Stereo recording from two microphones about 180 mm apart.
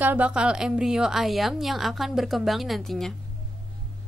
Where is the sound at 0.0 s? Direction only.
10° right (ahead or behind).